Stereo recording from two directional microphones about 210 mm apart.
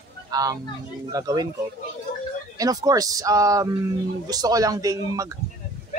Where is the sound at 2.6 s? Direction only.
15° right (ahead or behind).